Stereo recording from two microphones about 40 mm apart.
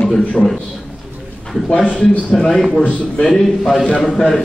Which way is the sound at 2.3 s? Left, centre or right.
Centre.